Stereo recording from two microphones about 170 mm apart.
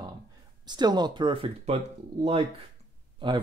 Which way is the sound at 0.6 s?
25° right (ahead or behind).